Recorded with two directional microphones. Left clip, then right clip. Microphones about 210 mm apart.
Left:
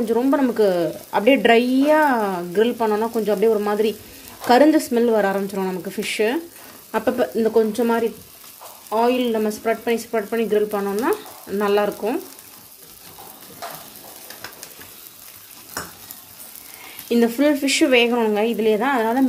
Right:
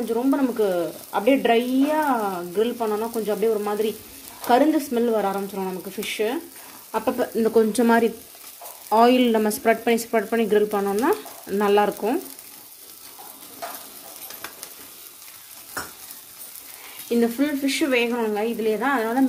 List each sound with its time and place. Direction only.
0.1 s speech: 15° left (ahead or behind)
7.2 s speech: centre (ahead or behind)
7.5 s speech: 20° right (ahead or behind)
17.1 s speech: 20° left (ahead or behind)